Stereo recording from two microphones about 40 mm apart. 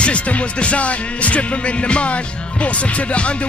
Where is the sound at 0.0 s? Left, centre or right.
Left.